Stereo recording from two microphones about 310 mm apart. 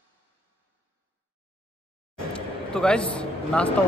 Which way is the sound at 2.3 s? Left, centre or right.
Centre.